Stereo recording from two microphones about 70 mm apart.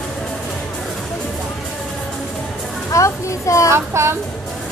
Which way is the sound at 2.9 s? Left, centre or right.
Left.